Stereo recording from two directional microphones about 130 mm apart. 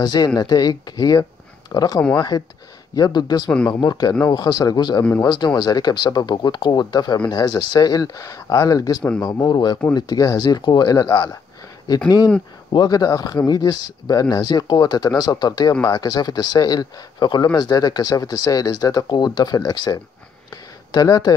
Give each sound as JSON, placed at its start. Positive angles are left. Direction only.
{"t": 0.0, "sound": "speech", "side_deg": 30}
{"t": 12.7, "sound": "speech", "side_deg": 30}